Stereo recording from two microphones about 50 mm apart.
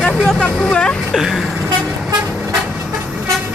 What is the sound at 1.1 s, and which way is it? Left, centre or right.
Vehicle, centre.